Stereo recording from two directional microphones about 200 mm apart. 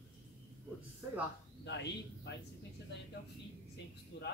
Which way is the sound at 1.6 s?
60° left (ahead or behind).